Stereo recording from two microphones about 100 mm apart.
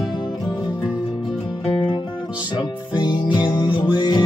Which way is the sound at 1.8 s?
50° left (ahead or behind).